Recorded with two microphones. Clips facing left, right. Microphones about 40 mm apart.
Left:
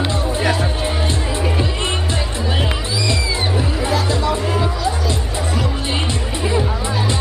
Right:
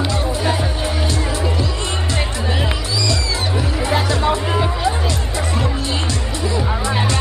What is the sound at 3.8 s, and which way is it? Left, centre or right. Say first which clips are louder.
Music: right 2 dB; right.